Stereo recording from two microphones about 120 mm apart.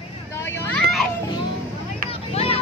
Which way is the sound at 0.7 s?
Centre (ahead or behind).